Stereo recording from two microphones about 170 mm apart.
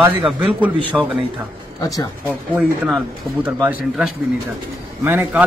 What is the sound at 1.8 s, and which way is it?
Speech, 20° left (ahead or behind).